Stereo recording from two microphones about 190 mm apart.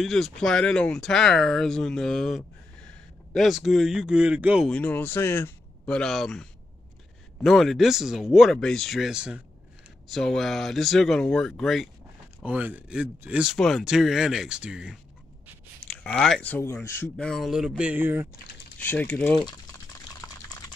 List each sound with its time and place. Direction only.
0.0 s speech: centre (ahead or behind)
4.6 s speech: 5° left (ahead or behind); by 18.3 s 10° right (ahead or behind)
18.8 s speech: 10° left (ahead or behind)
19.3 s speech: 25° left (ahead or behind)